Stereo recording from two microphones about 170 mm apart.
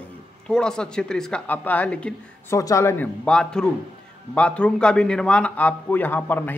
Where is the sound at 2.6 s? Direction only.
20° left (ahead or behind).